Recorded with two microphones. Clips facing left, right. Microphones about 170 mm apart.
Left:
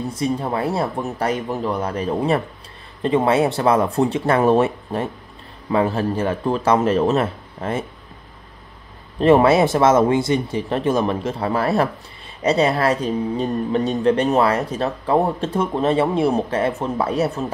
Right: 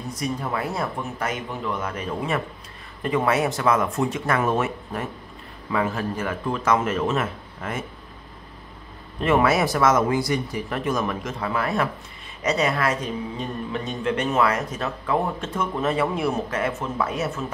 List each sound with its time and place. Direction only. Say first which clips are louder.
0.1 s speech: left 3 dB; 30° left (ahead or behind)
9.2 s speech: left 7 dB; 30° left (ahead or behind)